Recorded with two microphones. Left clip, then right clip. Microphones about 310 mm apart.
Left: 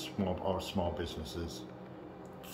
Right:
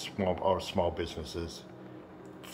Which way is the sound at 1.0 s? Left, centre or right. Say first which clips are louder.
Right 3 dB; right.